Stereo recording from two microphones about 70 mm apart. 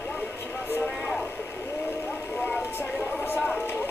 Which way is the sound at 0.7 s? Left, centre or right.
Left.